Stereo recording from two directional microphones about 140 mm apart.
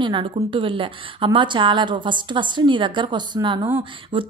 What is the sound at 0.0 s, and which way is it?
Speech, 35° right (ahead or behind).